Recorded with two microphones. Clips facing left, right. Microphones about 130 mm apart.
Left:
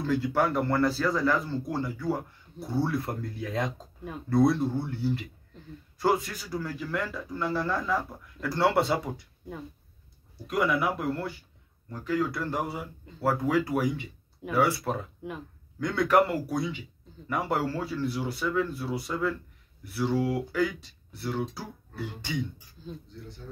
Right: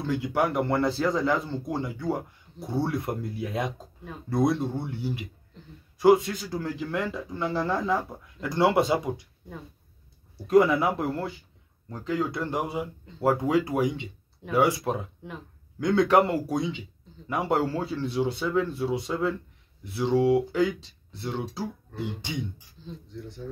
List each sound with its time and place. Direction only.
0.0 s speech: 15° right (ahead or behind)
10.4 s speech: 30° right (ahead or behind)
22.8 s speech: 10° left (ahead or behind)